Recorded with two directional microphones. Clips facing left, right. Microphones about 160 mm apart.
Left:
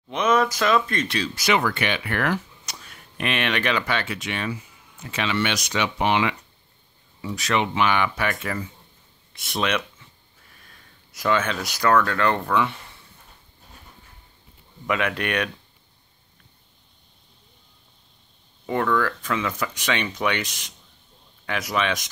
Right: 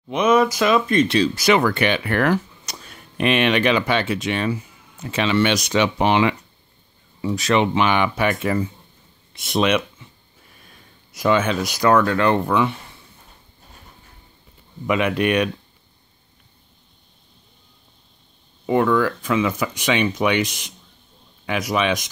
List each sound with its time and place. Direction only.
0.1 s speech: 10° right (ahead or behind); by 1.3 s 25° right (ahead or behind)
1.3 s speech: 40° right (ahead or behind); by 12.7 s 15° right (ahead or behind)
14.9 s speech: 15° right (ahead or behind)
18.7 s speech: 15° right (ahead or behind)